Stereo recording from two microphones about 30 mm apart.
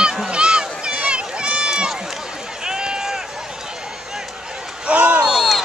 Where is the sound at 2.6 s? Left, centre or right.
Right.